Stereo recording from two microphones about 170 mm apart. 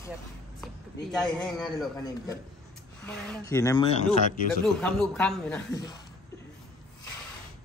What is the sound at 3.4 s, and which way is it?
Speech, 20° left (ahead or behind).